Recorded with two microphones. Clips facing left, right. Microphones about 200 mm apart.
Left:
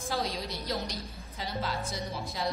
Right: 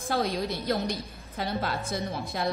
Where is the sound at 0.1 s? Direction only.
55° right (ahead or behind).